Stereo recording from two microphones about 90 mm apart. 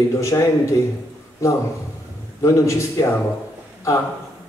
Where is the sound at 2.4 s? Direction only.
35° left (ahead or behind).